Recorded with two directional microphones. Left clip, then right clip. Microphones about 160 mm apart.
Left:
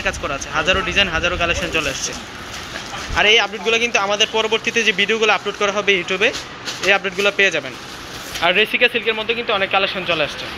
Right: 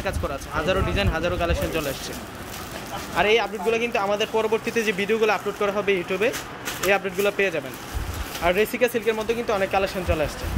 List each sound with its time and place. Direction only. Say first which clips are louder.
0.0 s speech: left 6 dB; 5° right (ahead or behind)
3.2 s speech: left 6 dB; 5° right (ahead or behind)
8.8 s speech: left 5 dB; 20° right (ahead or behind)